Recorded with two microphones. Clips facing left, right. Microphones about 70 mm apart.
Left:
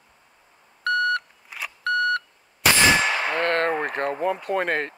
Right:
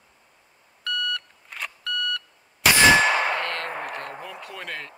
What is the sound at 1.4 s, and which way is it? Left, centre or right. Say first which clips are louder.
Beep: even; centre.